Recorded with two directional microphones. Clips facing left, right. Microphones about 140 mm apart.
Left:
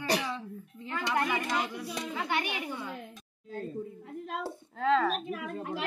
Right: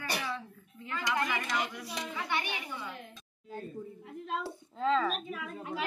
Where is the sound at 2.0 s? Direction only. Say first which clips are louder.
Left 2 dB; 50° left (ahead or behind).